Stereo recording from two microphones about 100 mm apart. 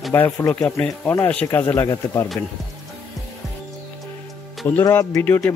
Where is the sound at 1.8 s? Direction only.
40° left (ahead or behind).